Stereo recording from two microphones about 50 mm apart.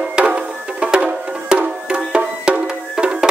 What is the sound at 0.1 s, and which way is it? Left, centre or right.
Music, right.